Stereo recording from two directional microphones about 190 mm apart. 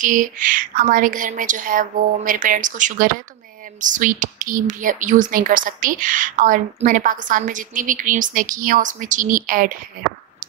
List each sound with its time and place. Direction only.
0.0 s speech: 45° right (ahead or behind)